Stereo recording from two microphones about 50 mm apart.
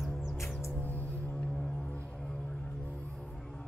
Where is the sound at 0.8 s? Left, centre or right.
Left.